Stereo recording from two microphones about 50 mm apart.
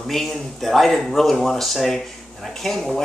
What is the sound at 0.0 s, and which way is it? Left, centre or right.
Speech, centre.